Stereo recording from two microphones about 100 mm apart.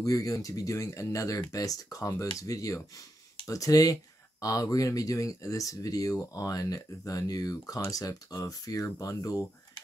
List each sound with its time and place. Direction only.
0.0 s speech: 35° left (ahead or behind)